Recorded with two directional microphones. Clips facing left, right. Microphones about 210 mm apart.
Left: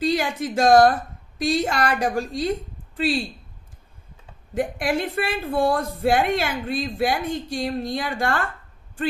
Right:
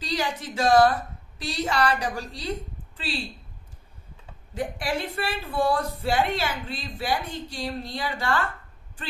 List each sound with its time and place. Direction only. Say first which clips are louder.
0.0 s a woman's voice: left 6 dB; 50° left (ahead or behind)
4.6 s speech: left 5 dB; 50° left (ahead or behind)